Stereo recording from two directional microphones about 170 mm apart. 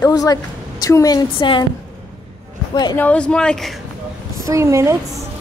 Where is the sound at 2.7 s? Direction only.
25° left (ahead or behind).